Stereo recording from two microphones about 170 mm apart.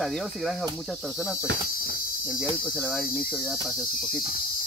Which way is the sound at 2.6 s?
5° left (ahead or behind).